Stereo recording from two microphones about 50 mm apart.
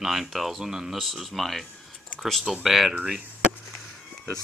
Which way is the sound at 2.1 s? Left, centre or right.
Left.